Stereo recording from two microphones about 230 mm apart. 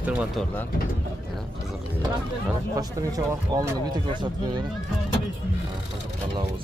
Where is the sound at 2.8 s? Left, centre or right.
Centre.